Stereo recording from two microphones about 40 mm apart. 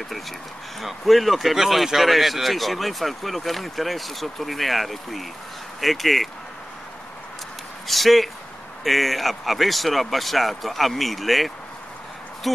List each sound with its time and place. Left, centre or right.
0.7 s speech: centre
7.9 s speech: centre